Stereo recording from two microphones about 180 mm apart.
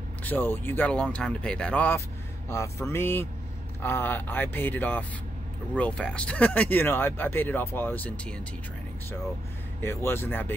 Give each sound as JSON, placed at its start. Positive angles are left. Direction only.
{"t": 0.2, "sound": "speech", "side_deg": 10}
{"t": 9.8, "sound": "speech", "side_deg": 15}